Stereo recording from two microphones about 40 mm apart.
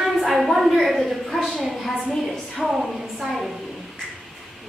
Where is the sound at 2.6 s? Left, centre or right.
Centre.